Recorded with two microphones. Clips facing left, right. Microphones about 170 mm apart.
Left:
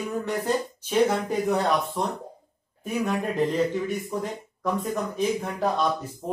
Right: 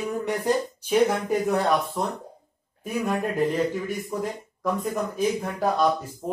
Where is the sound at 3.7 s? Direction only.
5° right (ahead or behind).